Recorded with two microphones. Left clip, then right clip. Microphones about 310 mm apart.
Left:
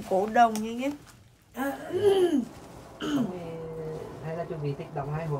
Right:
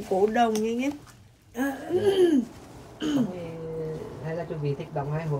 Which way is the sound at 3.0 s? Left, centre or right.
Centre.